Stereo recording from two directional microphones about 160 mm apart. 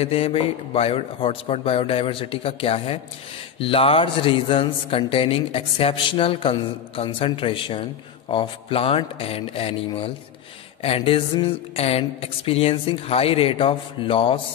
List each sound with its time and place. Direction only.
0.0 s speech: 35° left (ahead or behind)